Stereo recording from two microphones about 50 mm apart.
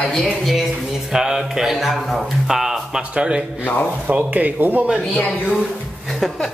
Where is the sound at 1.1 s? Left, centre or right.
Centre.